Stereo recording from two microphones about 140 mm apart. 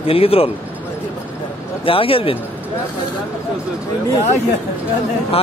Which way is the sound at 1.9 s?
40° left (ahead or behind).